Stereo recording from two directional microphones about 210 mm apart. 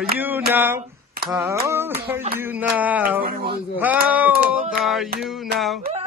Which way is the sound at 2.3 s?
10° right (ahead or behind).